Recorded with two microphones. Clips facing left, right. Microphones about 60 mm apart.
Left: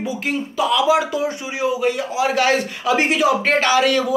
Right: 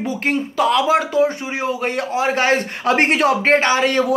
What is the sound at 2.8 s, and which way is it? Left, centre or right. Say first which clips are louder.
Speech: right 2 dB; right.